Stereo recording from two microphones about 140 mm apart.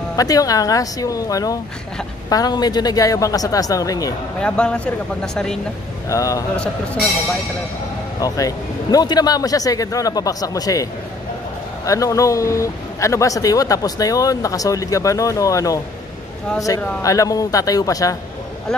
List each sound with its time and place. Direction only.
0.1 s speech: 25° left (ahead or behind)
4.4 s speech: 5° left (ahead or behind)
6.0 s speech: 25° left (ahead or behind)
6.5 s speech: 10° left (ahead or behind)
8.2 s speech: 25° left (ahead or behind)
17.0 s speech: 25° left (ahead or behind)